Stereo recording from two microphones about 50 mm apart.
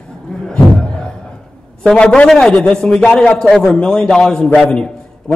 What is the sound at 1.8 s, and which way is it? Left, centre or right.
Speech, centre.